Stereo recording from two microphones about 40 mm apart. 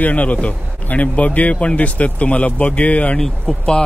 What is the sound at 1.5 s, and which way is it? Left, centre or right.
Speech, left.